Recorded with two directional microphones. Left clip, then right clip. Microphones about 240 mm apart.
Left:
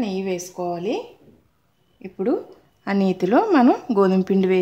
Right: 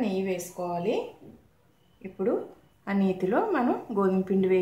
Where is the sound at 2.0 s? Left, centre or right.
Left.